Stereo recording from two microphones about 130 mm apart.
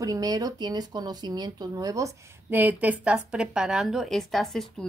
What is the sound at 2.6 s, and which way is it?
A woman's voice, 15° right (ahead or behind).